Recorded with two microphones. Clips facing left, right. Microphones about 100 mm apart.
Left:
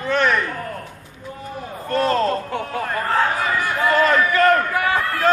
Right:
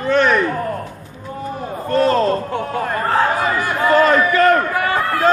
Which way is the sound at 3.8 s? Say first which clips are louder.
Right 4 dB; 35° right (ahead or behind).